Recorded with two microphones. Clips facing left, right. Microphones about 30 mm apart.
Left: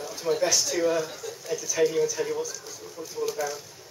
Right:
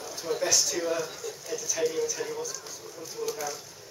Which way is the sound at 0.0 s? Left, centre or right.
Centre.